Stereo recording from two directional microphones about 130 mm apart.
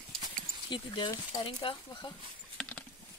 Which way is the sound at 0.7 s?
40° left (ahead or behind).